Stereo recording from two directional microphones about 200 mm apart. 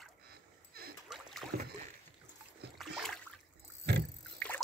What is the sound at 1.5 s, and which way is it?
Rowboat, 50° right (ahead or behind).